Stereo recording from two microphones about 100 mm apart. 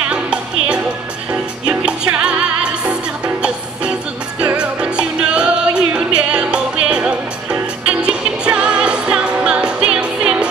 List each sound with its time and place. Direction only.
0.1 s music: 10° right (ahead or behind)
4.4 s music: 10° right (ahead or behind)